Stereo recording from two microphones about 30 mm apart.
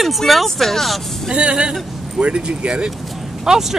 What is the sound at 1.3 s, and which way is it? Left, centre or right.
Speech, right.